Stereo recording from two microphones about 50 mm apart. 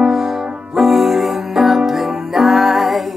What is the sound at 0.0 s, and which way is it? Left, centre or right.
Music, centre.